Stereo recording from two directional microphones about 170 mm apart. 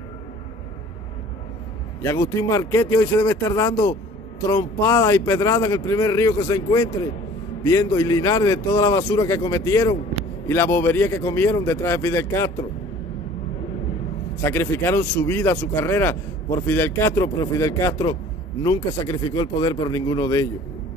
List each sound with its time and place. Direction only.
2.0 s speech: 20° left (ahead or behind)
14.4 s speech: 15° left (ahead or behind)